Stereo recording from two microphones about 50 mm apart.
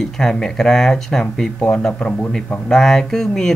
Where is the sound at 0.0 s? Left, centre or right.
Centre.